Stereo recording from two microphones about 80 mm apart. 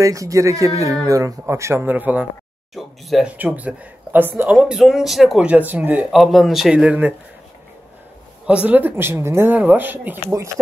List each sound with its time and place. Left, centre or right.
0.0 s speech: right
1.4 s speech: right
1.9 s speech: right
2.7 s a man's voice: centre
3.3 s speech: right
4.5 s speech: centre
4.7 s a man's voice: centre
5.4 s speech: centre
6.0 s a man's voice: centre
6.8 s speech: right
8.5 s speech: centre
10.3 s speech: right